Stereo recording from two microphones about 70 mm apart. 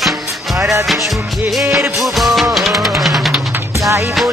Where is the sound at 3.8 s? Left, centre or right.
Right.